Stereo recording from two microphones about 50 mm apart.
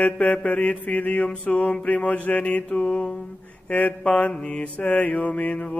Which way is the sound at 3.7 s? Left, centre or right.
Left.